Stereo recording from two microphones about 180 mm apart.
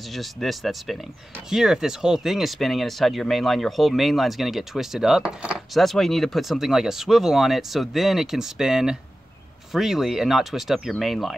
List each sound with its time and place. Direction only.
0.1 s speech: centre (ahead or behind)